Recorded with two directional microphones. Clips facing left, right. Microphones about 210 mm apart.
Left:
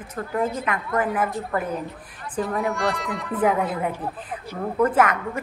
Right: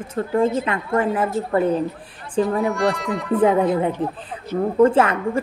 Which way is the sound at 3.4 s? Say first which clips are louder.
Right 5 dB; 30° right (ahead or behind).